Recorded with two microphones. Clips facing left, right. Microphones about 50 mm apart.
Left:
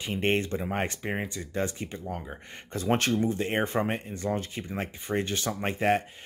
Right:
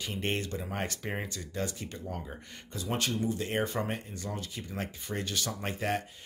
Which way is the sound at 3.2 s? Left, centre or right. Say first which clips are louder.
Left 4 dB; left.